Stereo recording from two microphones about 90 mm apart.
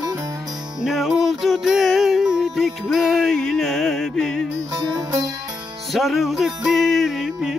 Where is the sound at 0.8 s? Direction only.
Centre (ahead or behind).